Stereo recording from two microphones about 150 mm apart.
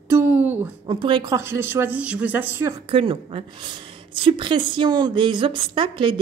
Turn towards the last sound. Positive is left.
turn(degrees=-35)  # may be behind; listen again after turning